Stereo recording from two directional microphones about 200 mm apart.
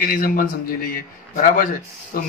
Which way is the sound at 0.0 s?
45° left (ahead or behind).